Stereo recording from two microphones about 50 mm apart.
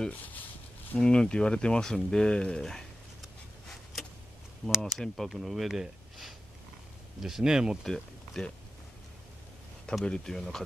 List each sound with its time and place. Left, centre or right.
0.1 s speech: left
0.9 s speech: centre
4.6 s speech: centre
4.9 s speech: centre
7.8 s speech: centre
10.0 s speech: centre